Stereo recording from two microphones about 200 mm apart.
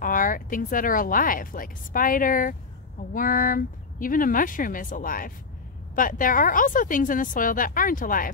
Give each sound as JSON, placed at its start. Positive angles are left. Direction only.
{"t": 0.0, "sound": "speech", "side_deg": 45}